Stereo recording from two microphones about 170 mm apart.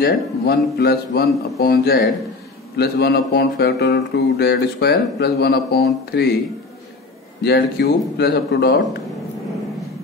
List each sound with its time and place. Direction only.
0.0 s speech: 70° left (ahead or behind)
7.4 s speech: 70° left (ahead or behind)